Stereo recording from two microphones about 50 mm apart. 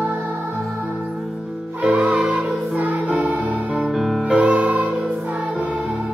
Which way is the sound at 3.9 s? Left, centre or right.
Centre.